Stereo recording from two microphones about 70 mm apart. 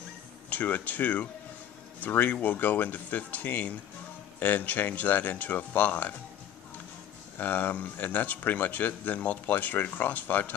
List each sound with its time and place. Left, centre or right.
0.5 s speech: left
7.3 s speech: left